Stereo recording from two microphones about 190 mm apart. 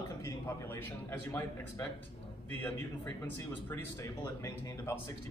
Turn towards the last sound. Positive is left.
turn(degrees=15)  # may be behind; listen again after turning